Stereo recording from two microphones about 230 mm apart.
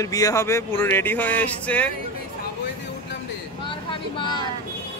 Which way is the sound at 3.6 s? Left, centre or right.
Left.